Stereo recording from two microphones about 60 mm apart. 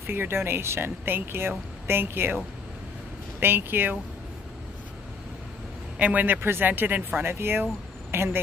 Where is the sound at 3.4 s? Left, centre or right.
Right.